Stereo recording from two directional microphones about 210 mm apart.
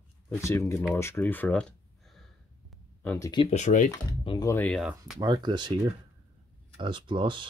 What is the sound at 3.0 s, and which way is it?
Speech, 15° left (ahead or behind).